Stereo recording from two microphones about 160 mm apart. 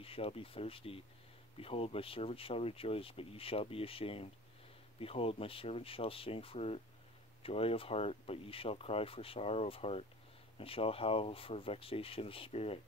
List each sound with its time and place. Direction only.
0.0 s speech: 35° left (ahead or behind)